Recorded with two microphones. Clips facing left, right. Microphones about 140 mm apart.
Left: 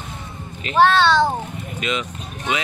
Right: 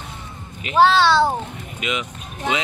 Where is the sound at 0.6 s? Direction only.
5° right (ahead or behind).